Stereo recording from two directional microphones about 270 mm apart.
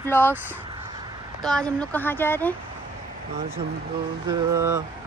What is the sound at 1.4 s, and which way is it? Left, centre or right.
Speech, centre.